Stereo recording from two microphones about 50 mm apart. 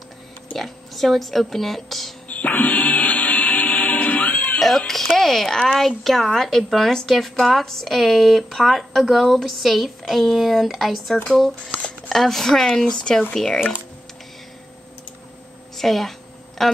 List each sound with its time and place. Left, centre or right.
0.6 s a woman's voice: centre
2.2 s music: left
4.6 s a woman's voice: centre
15.8 s a sound: centre